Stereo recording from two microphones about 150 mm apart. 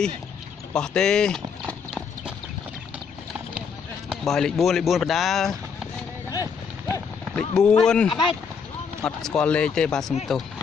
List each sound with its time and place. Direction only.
0.7 s clip-clop: 5° left (ahead or behind)
4.1 s speech: centre (ahead or behind)
6.3 s clip-clop: 25° left (ahead or behind)
7.3 s speech: 5° left (ahead or behind)
8.1 s speech: 30° left (ahead or behind)
9.0 s speech: 5° left (ahead or behind)